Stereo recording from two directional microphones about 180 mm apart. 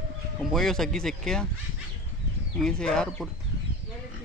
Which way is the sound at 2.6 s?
5° left (ahead or behind).